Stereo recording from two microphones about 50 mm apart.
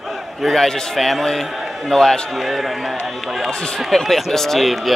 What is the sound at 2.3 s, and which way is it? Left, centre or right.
Speech, centre.